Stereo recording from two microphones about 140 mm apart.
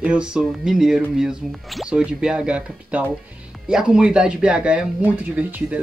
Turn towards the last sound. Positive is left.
turn(degrees=-10)  # may be behind; listen again after turning